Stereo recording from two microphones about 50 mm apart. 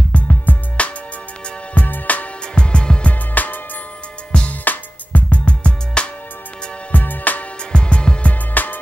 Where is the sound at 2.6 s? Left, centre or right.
Centre.